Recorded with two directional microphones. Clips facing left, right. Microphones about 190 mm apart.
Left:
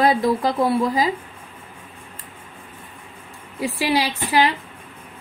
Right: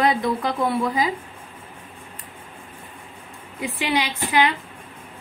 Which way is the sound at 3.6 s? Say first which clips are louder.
Left 3 dB; 35° left (ahead or behind).